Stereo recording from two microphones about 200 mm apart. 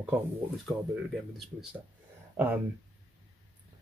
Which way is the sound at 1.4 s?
5° right (ahead or behind).